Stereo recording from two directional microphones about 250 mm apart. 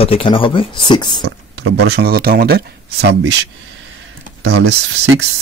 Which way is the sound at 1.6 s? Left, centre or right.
Right.